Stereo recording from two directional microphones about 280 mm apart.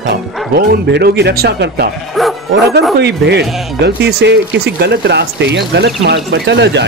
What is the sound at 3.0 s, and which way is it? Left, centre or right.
Speech, right.